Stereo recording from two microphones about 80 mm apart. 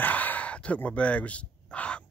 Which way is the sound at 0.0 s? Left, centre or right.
Left.